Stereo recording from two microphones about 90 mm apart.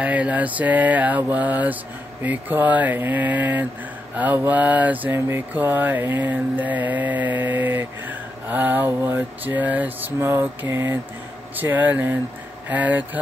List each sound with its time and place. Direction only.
0.0 s mantra: 15° right (ahead or behind)